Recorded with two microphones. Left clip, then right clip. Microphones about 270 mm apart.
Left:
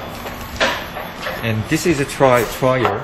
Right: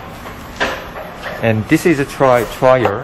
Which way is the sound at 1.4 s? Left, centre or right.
Centre.